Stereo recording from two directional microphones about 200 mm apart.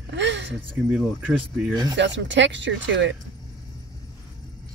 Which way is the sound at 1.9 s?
65° right (ahead or behind).